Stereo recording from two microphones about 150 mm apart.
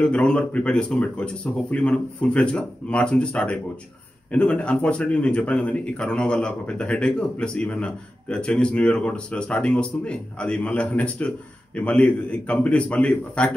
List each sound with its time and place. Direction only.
0.0 s speech: 5° left (ahead or behind)